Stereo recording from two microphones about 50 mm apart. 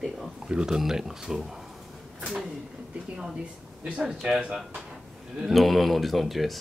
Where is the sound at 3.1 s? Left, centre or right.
Centre.